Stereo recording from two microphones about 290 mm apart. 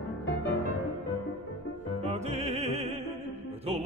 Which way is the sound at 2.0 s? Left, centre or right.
Right.